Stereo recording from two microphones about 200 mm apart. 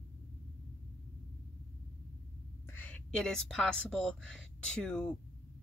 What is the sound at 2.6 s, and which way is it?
Speech, 10° left (ahead or behind).